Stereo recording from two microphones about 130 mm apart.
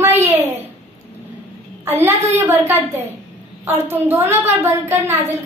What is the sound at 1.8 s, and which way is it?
Speech, 15° right (ahead or behind).